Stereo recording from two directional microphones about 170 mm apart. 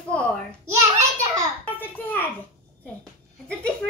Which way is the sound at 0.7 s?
15° right (ahead or behind).